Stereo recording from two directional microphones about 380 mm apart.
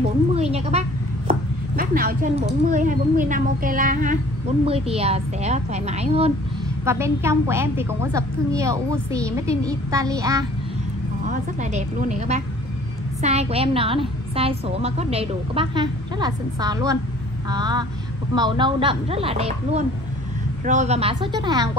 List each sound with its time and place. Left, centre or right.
0.3 s a sound: centre
1.8 s a woman's voice: right
11.2 s a woman's voice: centre